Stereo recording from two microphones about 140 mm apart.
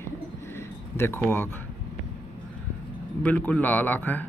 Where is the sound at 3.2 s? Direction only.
10° left (ahead or behind).